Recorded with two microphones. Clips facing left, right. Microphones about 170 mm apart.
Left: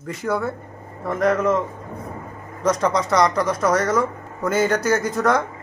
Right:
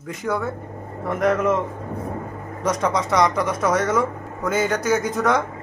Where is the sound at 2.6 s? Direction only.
5° right (ahead or behind).